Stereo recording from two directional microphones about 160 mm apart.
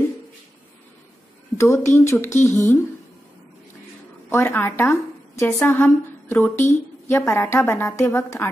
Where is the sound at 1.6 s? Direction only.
15° left (ahead or behind).